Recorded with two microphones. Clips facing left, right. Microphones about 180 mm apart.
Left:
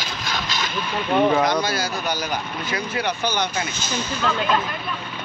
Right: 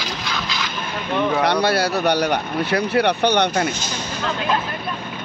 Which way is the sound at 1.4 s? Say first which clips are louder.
Right 3 dB; 65° right (ahead or behind).